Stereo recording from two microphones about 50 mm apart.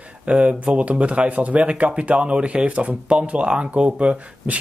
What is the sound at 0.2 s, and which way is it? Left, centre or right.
Speech, right.